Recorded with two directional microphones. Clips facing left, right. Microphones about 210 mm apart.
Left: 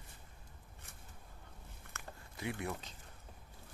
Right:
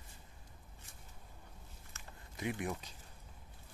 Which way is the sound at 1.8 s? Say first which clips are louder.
Left 5 dB; 60° left (ahead or behind).